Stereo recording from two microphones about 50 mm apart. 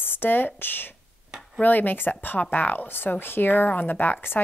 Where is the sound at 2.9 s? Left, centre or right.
Left.